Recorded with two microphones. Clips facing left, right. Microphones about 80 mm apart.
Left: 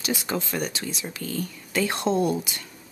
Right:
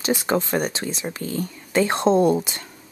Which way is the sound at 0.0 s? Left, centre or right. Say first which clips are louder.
Right 6 dB; right.